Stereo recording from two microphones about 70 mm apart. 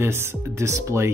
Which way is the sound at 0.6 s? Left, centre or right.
Right.